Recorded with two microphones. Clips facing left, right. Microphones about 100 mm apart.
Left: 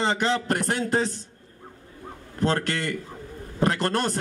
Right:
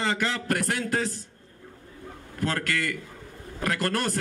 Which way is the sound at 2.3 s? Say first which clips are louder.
Left 3 dB; 25° left (ahead or behind).